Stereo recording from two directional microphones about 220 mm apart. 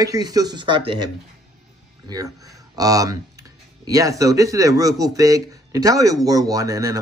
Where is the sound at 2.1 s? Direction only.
15° right (ahead or behind).